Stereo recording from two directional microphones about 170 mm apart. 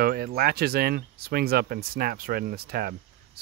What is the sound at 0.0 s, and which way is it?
Speech, 60° right (ahead or behind).